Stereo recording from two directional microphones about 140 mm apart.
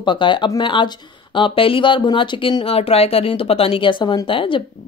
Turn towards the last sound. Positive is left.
turn(degrees=40)  # may be behind; listen again after turning